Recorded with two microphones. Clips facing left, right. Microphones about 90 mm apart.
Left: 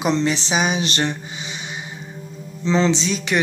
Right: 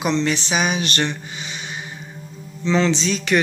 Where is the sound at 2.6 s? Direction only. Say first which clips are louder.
Even; 30° left (ahead or behind).